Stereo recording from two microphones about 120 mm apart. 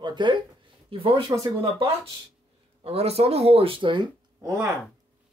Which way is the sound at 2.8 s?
60° right (ahead or behind).